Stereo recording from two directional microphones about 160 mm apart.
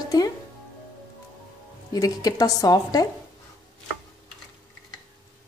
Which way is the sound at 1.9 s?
25° left (ahead or behind).